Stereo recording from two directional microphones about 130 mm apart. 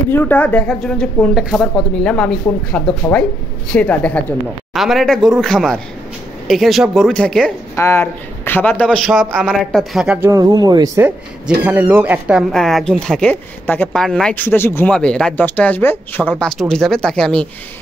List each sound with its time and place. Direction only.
0.1 s speech: 15° left (ahead or behind)
4.7 s speech: centre (ahead or behind)
7.7 s speech: 20° left (ahead or behind)
8.9 s speech: centre (ahead or behind)
10.3 s speech: 30° right (ahead or behind)
11.0 s speech: 10° right (ahead or behind); by 14.3 s 5° left (ahead or behind)
14.3 s speech: 15° left (ahead or behind)
16.3 s speech: 5° left (ahead or behind)